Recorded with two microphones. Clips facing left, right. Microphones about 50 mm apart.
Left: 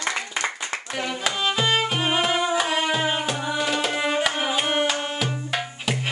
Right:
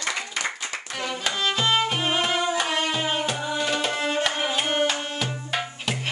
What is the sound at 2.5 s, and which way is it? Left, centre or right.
Tabla, centre.